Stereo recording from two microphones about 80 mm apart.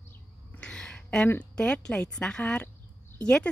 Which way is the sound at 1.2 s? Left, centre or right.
Centre.